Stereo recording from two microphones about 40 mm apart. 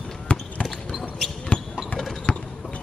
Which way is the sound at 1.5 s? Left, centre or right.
Left.